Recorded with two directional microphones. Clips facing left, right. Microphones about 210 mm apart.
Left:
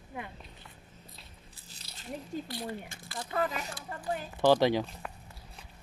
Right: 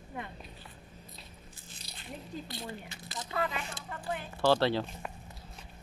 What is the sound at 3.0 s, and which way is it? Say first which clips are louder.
Squish: left 2 dB; 20° right (ahead or behind).